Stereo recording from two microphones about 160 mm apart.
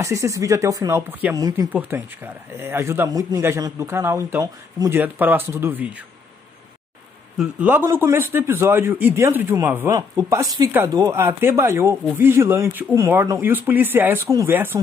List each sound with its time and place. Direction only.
0.0 s speech: 20° right (ahead or behind)
7.3 s speech: 10° right (ahead or behind)